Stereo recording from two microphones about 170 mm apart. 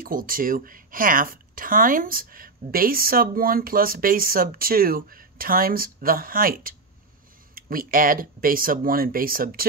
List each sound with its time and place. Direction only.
0.0 s speech: 55° right (ahead or behind)